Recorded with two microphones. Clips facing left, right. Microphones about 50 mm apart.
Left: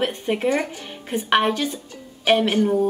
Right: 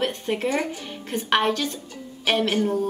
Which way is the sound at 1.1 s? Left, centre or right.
Centre.